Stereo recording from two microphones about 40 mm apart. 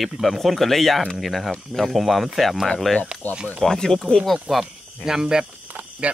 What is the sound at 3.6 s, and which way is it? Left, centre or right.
Speech, centre.